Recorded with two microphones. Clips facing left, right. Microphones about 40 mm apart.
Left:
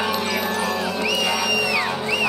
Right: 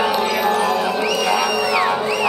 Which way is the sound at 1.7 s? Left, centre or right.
Centre.